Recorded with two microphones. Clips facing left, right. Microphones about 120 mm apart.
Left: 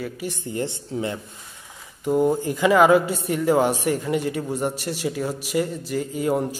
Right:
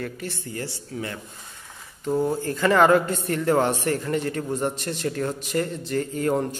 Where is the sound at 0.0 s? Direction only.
10° left (ahead or behind).